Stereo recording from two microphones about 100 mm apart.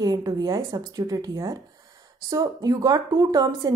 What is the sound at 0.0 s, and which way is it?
A woman's voice, 40° right (ahead or behind).